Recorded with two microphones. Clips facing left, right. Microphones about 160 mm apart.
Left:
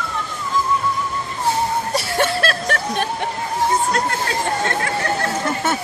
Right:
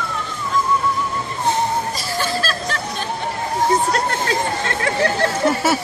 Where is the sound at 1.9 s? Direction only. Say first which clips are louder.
Left 3 dB; 70° left (ahead or behind).